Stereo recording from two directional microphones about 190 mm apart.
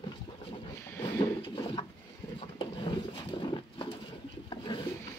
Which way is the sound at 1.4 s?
25° left (ahead or behind).